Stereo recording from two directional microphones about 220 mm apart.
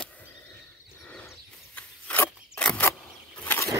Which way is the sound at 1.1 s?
5° left (ahead or behind).